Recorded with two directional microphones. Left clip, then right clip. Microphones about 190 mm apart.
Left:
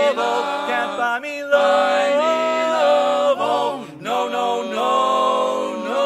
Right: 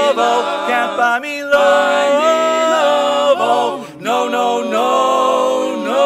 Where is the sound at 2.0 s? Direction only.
15° right (ahead or behind).